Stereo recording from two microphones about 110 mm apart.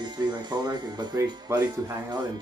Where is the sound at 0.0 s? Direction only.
40° right (ahead or behind).